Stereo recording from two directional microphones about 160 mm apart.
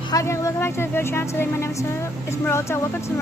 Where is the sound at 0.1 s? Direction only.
20° left (ahead or behind).